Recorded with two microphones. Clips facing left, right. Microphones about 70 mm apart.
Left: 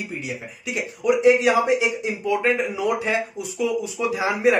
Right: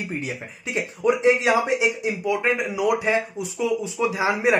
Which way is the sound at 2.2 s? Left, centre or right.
Centre.